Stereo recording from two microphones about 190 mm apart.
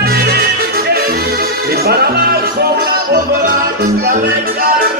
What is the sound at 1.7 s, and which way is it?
Music, 55° right (ahead or behind).